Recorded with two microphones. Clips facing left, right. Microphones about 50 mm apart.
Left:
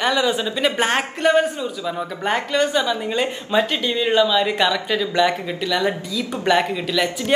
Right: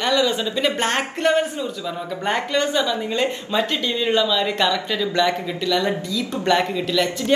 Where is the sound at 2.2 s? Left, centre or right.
Centre.